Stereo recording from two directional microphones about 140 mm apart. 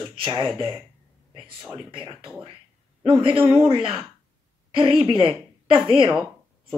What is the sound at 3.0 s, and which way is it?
Speech, 35° right (ahead or behind).